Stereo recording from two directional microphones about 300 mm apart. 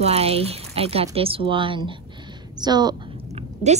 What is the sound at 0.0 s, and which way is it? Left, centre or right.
A woman's voice, centre.